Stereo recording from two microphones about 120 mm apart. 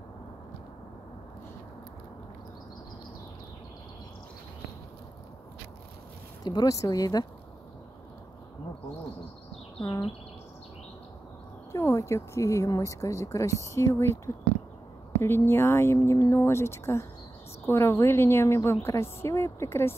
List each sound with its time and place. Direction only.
6.4 s speech: 35° left (ahead or behind)
9.8 s speech: 45° left (ahead or behind)
11.7 s speech: 25° left (ahead or behind)